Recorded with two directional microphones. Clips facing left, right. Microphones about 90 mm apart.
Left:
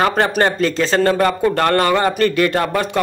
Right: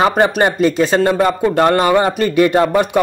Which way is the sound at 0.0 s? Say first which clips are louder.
Right 3 dB; 15° right (ahead or behind).